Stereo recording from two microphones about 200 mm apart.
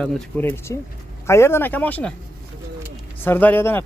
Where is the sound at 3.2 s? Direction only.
10° left (ahead or behind).